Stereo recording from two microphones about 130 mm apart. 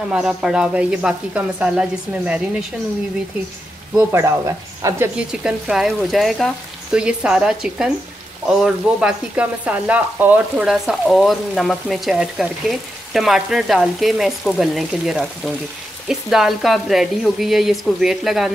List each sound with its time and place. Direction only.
0.1 s speech: 5° right (ahead or behind)
4.1 s speech: 25° right (ahead or behind)
5.1 s frying: 5° right (ahead or behind)